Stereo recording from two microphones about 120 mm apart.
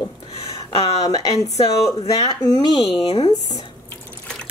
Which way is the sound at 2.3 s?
35° left (ahead or behind).